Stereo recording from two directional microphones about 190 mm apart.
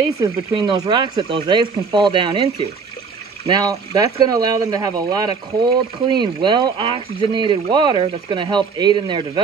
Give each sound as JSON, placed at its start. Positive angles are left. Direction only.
{"t": 0.2, "sound": "speech", "side_deg": -20}